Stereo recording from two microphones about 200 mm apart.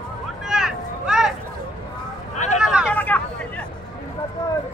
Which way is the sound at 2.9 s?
10° left (ahead or behind).